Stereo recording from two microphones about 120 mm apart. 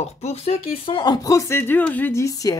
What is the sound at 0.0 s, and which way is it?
Speech, 60° left (ahead or behind).